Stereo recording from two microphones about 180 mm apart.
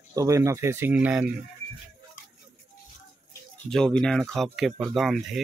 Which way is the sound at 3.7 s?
5° left (ahead or behind).